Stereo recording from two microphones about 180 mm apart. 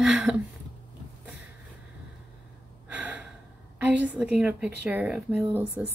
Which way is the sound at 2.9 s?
10° right (ahead or behind).